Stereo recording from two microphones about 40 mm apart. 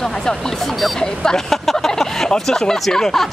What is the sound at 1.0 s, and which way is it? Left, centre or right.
Speech, centre.